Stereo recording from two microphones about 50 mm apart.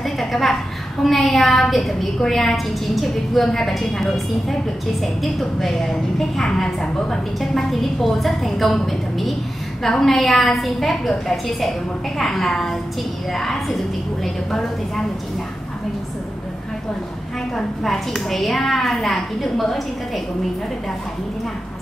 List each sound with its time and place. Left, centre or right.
0.0 s a sound: centre
1.0 s a woman's voice: centre
17.6 s a woman's voice: centre